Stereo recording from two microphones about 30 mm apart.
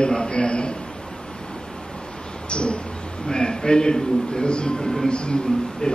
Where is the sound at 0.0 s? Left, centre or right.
Left.